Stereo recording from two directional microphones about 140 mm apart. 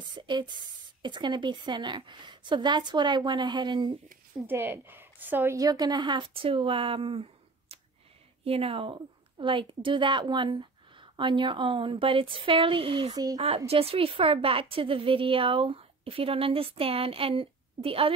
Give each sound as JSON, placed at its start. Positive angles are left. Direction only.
{"t": 0.1, "sound": "a woman's voice", "side_deg": -35}
{"t": 4.5, "sound": "a woman's voice", "side_deg": -15}
{"t": 13.7, "sound": "a woman's voice", "side_deg": -45}